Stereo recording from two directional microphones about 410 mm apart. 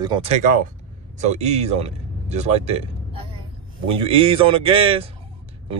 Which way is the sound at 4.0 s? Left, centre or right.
Centre.